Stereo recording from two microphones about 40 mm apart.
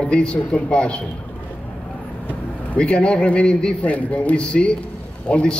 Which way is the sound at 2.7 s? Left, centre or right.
Left.